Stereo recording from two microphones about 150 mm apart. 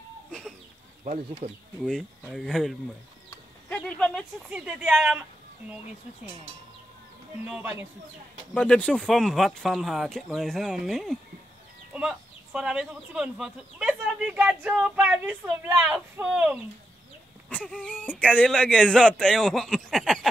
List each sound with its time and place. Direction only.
0.3 s chicken: centre (ahead or behind)
1.4 s speech: 45° right (ahead or behind)
1.8 s speech: centre (ahead or behind)
3.7 s speech: 5° left (ahead or behind)
4.5 s speech: 5° right (ahead or behind)
7.4 s speech: 10° right (ahead or behind)
8.5 s speech: 5° left (ahead or behind)
17.5 s a sound: 10° left (ahead or behind)
18.3 s speech: 5° left (ahead or behind)